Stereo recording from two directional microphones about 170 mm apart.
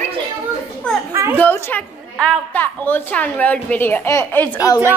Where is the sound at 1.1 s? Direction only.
15° right (ahead or behind).